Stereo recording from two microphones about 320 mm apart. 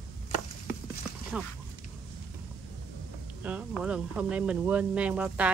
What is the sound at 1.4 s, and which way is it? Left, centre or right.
Speech, centre.